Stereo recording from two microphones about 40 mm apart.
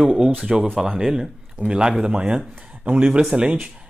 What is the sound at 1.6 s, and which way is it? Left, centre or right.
Speech, right.